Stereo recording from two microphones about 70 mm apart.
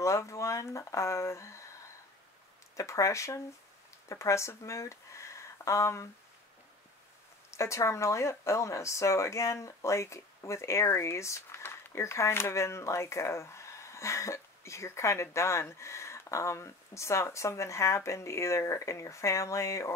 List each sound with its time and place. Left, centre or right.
0.0 s speech: left
2.7 s speech: left
7.5 s speech: left